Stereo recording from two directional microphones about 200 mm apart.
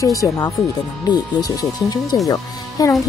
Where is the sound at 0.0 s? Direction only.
15° left (ahead or behind).